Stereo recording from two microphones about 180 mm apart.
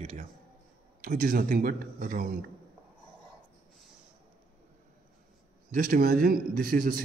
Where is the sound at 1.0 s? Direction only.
50° right (ahead or behind).